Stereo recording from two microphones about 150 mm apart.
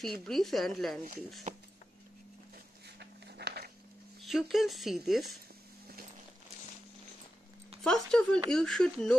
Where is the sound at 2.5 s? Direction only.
90° right.